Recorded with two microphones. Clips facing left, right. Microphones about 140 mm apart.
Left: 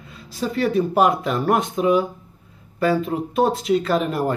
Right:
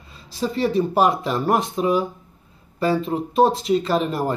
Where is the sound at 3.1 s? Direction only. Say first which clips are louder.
Right 2 dB; 30° right (ahead or behind).